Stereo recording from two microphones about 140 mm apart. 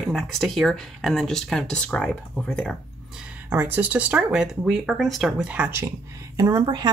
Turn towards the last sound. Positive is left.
turn(degrees=-30)  # may be behind; listen again after turning